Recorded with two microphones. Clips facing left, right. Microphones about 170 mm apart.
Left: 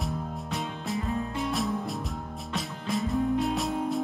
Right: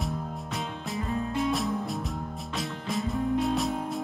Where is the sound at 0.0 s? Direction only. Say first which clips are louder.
Even; centre (ahead or behind).